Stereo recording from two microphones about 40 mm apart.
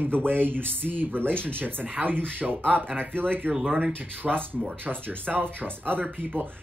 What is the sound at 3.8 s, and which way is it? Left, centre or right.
Speech, right.